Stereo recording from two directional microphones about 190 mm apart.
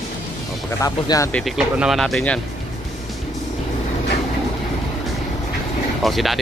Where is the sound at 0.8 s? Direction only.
15° left (ahead or behind).